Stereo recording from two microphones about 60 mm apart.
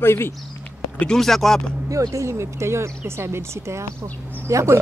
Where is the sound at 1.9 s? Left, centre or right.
Right.